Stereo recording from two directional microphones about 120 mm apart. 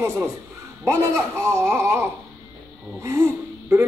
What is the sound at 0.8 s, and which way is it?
Speech, 20° right (ahead or behind).